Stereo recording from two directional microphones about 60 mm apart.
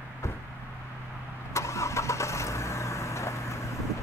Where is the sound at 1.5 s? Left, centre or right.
Left.